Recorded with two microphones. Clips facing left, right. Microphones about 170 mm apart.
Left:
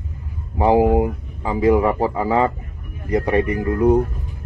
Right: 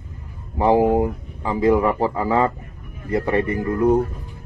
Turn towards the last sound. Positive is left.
turn(degrees=15)  # may be behind; listen again after turning